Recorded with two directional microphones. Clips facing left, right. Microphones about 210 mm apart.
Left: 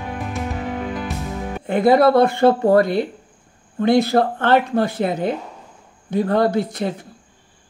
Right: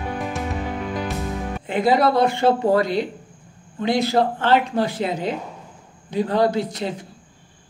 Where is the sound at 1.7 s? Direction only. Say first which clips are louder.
Left 4 dB; 55° left (ahead or behind).